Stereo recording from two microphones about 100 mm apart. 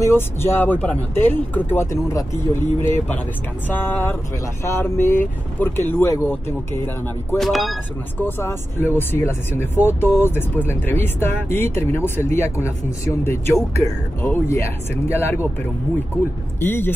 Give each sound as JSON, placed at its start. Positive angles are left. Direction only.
{"t": 0.0, "sound": "speech", "side_deg": 25}
{"t": 1.9, "sound": "speech", "side_deg": 30}
{"t": 3.6, "sound": "speech", "side_deg": 20}
{"t": 7.3, "sound": "speech", "side_deg": 0}
{"t": 8.2, "sound": "speech", "side_deg": 25}
{"t": 16.5, "sound": "a man's voice", "side_deg": 20}